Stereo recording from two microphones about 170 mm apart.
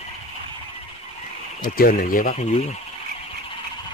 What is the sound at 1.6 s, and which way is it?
Speech, 55° left (ahead or behind).